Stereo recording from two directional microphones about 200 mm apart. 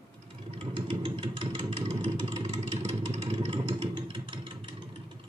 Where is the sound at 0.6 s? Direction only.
25° right (ahead or behind).